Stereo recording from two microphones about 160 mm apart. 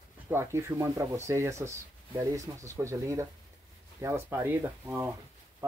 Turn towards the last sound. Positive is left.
turn(degrees=-15)  # may be behind; listen again after turning